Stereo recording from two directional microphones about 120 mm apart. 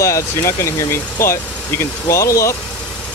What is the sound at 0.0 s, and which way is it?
Speech, 25° left (ahead or behind).